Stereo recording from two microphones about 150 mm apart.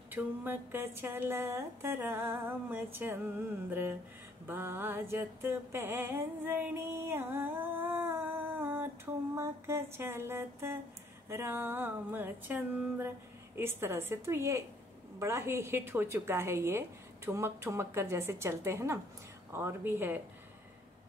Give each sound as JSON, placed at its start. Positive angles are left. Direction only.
{"t": 0.1, "sound": "a woman's voice", "side_deg": -15}
{"t": 4.5, "sound": "mantra", "side_deg": -15}
{"t": 11.2, "sound": "a woman's voice", "side_deg": -15}